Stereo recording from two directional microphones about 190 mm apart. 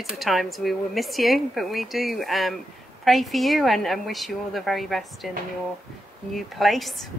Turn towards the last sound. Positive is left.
turn(degrees=0)  # may be behind; listen again after turning